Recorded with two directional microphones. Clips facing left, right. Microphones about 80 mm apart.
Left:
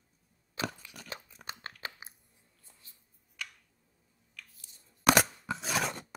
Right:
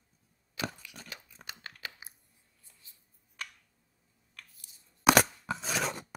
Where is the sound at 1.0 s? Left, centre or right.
Left.